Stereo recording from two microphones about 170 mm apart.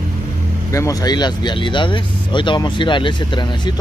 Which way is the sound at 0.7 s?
20° left (ahead or behind).